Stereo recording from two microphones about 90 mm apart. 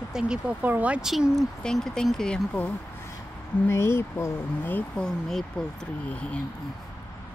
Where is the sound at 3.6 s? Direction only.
30° left (ahead or behind).